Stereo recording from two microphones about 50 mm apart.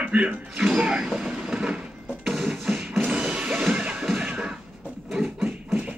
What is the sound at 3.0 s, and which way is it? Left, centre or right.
Music, right.